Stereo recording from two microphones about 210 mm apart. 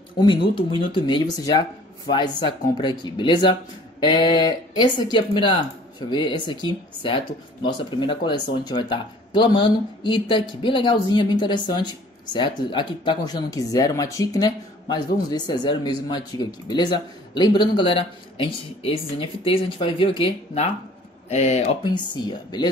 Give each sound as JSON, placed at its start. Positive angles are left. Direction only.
{"t": 0.2, "sound": "speech", "side_deg": 20}
{"t": 21.8, "sound": "speech", "side_deg": 20}